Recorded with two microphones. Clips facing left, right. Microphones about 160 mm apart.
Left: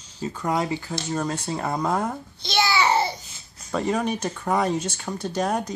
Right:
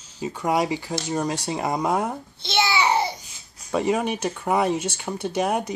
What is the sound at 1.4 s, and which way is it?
Speech, 15° right (ahead or behind).